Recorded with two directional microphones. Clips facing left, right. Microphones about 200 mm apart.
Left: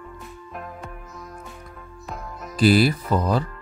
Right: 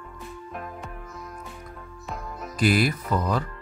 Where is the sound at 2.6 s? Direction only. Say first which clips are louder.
Left 5 dB; 35° left (ahead or behind).